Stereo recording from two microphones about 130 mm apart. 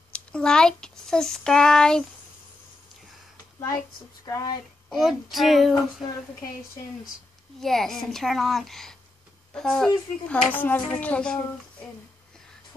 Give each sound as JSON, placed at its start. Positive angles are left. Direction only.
{"t": 0.1, "sound": "a child's voice", "side_deg": 5}
{"t": 4.3, "sound": "speech", "side_deg": 25}
{"t": 4.8, "sound": "a woman's voice", "side_deg": 0}
{"t": 7.6, "sound": "a woman's voice", "side_deg": 0}